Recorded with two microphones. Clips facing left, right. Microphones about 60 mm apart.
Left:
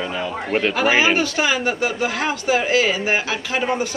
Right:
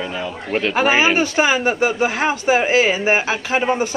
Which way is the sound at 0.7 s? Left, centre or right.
Right.